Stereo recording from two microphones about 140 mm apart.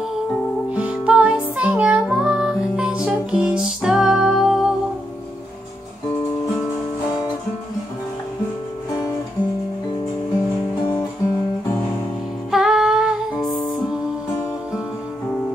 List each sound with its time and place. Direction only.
0.7 s music: 10° right (ahead or behind)
12.4 s music: 5° right (ahead or behind)